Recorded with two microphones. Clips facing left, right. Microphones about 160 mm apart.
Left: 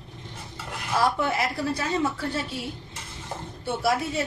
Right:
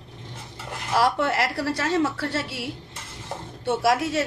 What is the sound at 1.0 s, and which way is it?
A woman's voice, 80° right.